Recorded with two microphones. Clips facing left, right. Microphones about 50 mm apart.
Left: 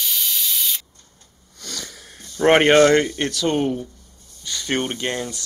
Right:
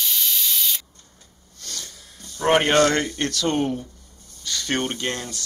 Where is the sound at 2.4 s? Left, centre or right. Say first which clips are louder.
Left 4 dB; left.